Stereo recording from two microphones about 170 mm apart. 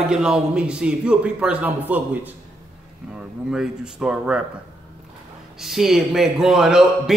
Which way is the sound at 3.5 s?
5° right (ahead or behind).